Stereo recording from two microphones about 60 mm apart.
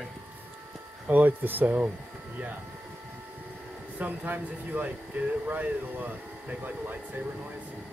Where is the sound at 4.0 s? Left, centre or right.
Right.